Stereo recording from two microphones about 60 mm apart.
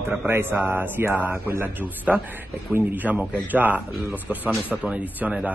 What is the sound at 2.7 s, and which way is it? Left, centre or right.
Speech, right.